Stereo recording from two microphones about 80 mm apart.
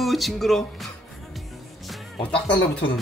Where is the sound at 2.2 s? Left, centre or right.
Centre.